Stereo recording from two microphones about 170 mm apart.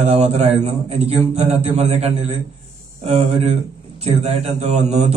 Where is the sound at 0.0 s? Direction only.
40° right (ahead or behind).